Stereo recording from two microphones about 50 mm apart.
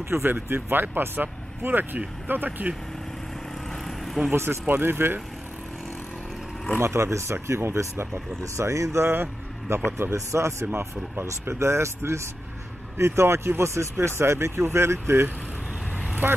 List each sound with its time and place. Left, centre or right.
0.1 s speech: right
3.8 s vehicle: centre
4.3 s speech: right
6.8 s speech: right
9.0 s speech: right
10.1 s speech: right
11.2 s speech: right